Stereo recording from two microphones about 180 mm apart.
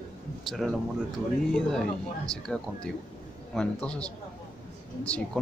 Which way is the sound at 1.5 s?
5° left (ahead or behind).